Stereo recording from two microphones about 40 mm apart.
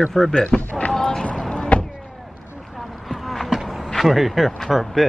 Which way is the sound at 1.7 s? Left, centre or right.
Left.